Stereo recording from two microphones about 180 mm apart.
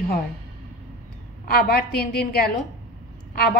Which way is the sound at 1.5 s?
55° left (ahead or behind).